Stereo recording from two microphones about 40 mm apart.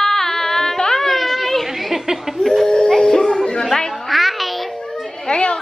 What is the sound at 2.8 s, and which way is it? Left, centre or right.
Music, centre.